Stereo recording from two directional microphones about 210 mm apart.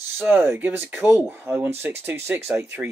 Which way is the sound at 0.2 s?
10° right (ahead or behind).